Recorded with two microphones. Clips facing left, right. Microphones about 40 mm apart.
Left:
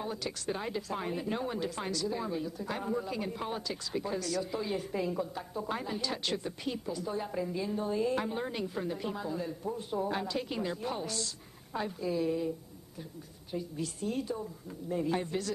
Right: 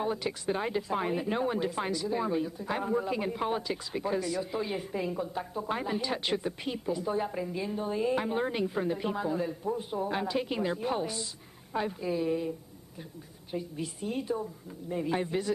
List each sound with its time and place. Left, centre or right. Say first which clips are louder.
0.0 s speech: right 5 dB; right